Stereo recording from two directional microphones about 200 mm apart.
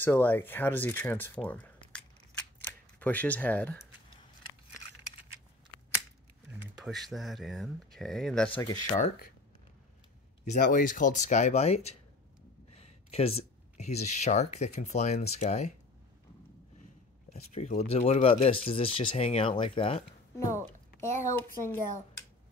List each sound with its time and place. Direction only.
0.0 s speech: 10° left (ahead or behind)
2.3 s camera: 10° left (ahead or behind)
6.8 s speech: centre (ahead or behind)
10.5 s speech: 40° left (ahead or behind)
12.7 s a sound: 30° left (ahead or behind)
13.7 s speech: 35° left (ahead or behind)
17.3 s speech: 35° left (ahead or behind)
20.3 s a sound: 15° left (ahead or behind)